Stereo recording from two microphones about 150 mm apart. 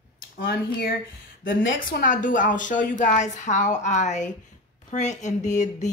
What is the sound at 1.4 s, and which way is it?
A woman's voice, 65° left (ahead or behind).